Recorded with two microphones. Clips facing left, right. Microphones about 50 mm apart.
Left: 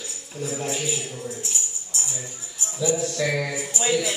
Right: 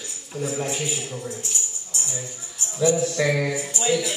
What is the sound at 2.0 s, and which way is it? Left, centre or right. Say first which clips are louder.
Music: right 1 dB; centre.